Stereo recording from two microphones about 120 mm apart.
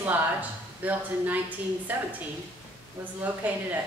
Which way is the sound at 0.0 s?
15° right (ahead or behind).